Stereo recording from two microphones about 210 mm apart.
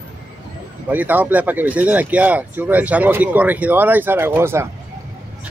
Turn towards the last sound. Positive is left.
turn(degrees=-10)  # may be behind; listen again after turning